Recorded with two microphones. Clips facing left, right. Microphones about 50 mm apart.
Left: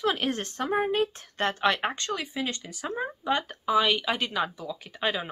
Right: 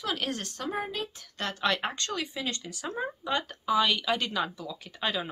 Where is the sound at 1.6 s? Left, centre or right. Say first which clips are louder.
Left 1 dB; centre.